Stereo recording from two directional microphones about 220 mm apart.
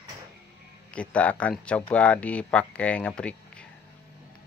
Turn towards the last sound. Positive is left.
turn(degrees=5)  # may be behind; listen again after turning